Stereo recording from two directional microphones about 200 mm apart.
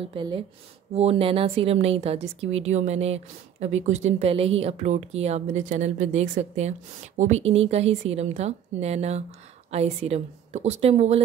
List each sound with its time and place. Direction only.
0.1 s speech: 25° right (ahead or behind)